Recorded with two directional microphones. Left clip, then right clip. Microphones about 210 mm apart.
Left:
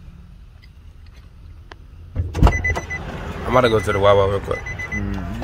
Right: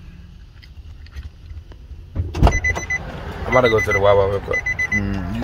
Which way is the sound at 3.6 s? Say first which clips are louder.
Right 1 dB; 25° left (ahead or behind).